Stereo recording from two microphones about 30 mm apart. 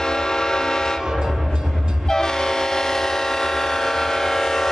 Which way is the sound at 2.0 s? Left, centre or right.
Centre.